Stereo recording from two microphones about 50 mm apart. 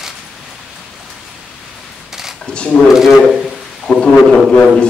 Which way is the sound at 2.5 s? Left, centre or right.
Left.